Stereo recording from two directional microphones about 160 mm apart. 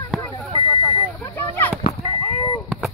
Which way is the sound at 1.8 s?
35° left (ahead or behind).